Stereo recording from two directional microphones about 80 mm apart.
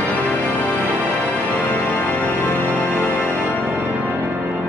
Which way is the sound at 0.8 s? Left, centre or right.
Right.